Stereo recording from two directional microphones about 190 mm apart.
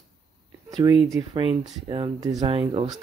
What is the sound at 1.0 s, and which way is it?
Speech, 20° right (ahead or behind).